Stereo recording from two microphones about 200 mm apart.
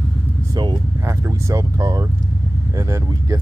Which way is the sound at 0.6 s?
20° right (ahead or behind).